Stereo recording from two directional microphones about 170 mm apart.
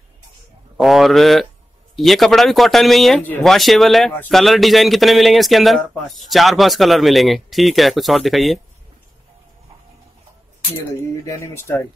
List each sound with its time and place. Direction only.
0.7 s speech: centre (ahead or behind)
11.2 s speech: 15° left (ahead or behind)